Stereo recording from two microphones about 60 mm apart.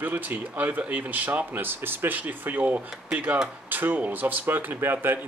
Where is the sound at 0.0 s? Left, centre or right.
Right.